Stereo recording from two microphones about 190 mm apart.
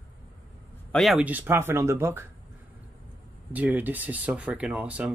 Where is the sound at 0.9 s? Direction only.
Centre (ahead or behind).